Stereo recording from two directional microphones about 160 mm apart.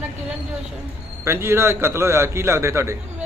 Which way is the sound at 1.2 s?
15° right (ahead or behind).